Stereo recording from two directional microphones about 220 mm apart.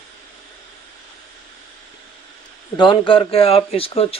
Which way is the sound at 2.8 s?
20° left (ahead or behind).